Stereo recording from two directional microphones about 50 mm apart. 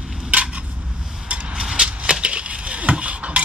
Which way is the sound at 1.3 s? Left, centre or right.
Right.